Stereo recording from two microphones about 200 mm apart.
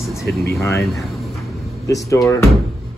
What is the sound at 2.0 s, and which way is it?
Speech, 15° left (ahead or behind).